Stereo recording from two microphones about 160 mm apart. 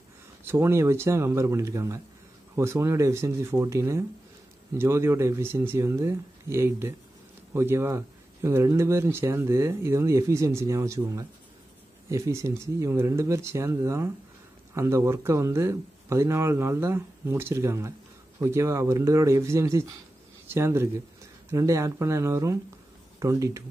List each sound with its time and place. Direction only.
0.5 s speech: 15° right (ahead or behind)